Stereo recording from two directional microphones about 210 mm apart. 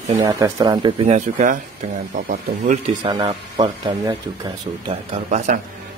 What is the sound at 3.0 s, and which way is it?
Speech, 20° right (ahead or behind).